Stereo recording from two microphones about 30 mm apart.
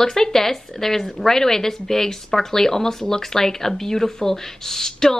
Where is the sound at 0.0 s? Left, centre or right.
Centre.